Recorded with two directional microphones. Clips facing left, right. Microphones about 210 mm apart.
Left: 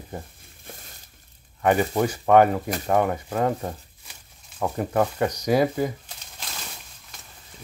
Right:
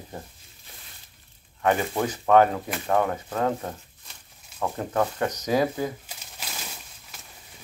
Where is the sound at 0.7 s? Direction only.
45° left (ahead or behind).